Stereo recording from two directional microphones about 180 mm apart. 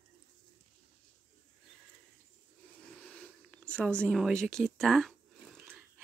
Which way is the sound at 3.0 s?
5° left (ahead or behind).